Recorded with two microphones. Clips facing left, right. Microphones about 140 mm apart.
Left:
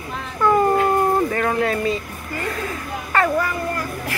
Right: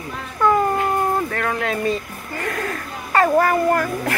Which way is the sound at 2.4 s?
65° right (ahead or behind).